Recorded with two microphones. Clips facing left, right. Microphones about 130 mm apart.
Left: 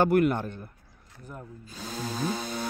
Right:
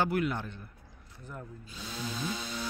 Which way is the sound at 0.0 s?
50° left (ahead or behind).